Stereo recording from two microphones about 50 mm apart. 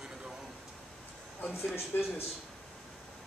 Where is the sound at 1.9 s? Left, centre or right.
Left.